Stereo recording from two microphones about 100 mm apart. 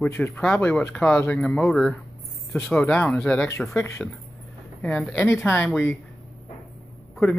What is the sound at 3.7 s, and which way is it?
Speech, 25° left (ahead or behind).